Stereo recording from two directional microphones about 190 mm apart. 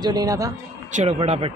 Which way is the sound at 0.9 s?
35° right (ahead or behind).